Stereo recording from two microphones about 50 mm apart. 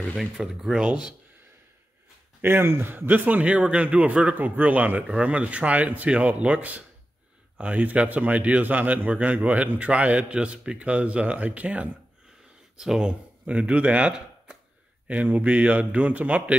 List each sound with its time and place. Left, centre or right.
0.2 s speech: centre
2.4 s speech: right
2.9 s a man's voice: right
12.7 s speech: centre
13.5 s speech: right
15.0 s a man's voice: right